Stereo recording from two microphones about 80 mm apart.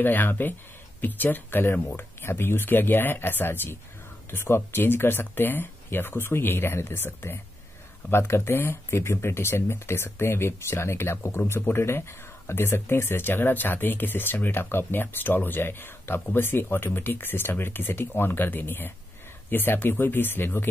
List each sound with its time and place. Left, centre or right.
0.0 s speech: left